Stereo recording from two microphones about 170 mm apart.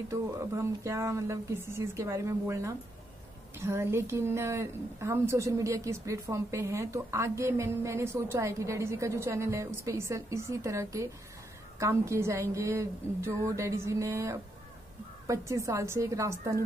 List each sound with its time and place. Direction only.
0.1 s a woman's voice: 15° right (ahead or behind)